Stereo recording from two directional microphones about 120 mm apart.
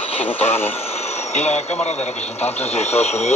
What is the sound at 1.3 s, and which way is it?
Speech, 65° left (ahead or behind).